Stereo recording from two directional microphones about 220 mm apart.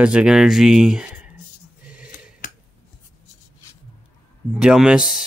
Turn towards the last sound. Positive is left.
turn(degrees=-5)  # may be behind; listen again after turning